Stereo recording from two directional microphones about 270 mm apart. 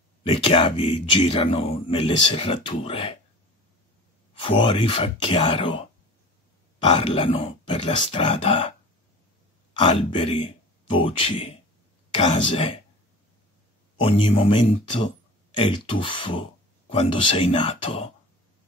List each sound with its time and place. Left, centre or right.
0.2 s a man's voice: centre
4.3 s a man's voice: centre
6.8 s a man's voice: centre
9.8 s speech: centre
14.0 s a man's voice: centre